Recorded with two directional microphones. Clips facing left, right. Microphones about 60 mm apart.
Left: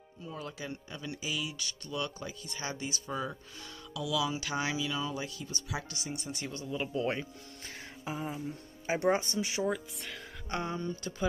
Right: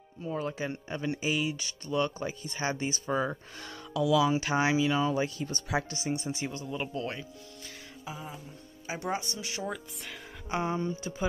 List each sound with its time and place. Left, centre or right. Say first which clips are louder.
0.2 s speech: right 8 dB; right
6.5 s speech: right 1 dB; centre
6.9 s speech: left 3 dB; centre
7.6 s music: left 3 dB; left
8.8 s speech: left 5 dB; left
9.6 s speech: left 3 dB; centre
10.5 s speech: right 4 dB; centre